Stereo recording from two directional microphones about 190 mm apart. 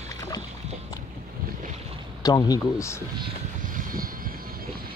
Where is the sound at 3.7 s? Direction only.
45° right (ahead or behind).